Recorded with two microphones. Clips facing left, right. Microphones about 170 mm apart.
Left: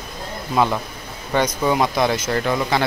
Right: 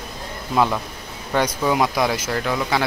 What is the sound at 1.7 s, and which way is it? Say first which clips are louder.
Speech: left 1 dB; 5° right (ahead or behind).